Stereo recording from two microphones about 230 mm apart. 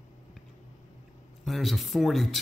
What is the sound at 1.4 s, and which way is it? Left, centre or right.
Speech, centre.